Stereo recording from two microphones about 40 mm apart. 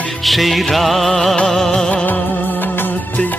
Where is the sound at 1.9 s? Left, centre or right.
Left.